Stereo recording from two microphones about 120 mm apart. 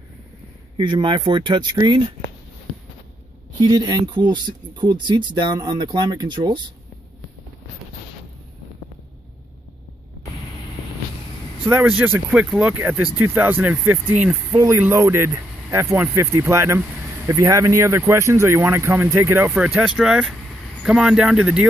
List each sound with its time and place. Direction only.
0.7 s speech: 40° right (ahead or behind)
3.6 s speech: 35° right (ahead or behind)
11.6 s speech: 15° right (ahead or behind)